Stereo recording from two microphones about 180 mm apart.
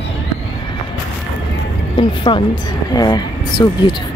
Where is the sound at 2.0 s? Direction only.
25° left (ahead or behind).